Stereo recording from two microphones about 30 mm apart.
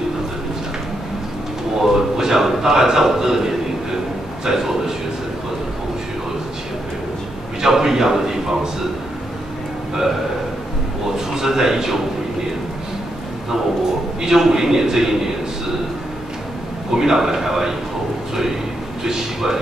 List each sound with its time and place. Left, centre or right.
1.8 s a sound: centre
7.6 s a man's voice: centre
11.1 s a man's voice: centre
14.2 s a man's voice: centre
16.9 s a man's voice: centre
19.0 s speech: centre